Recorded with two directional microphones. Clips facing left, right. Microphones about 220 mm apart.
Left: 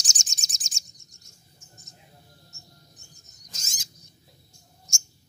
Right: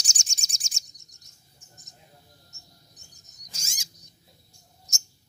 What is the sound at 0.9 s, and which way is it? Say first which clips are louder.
Bird vocalization: left 4 dB; 20° right (ahead or behind).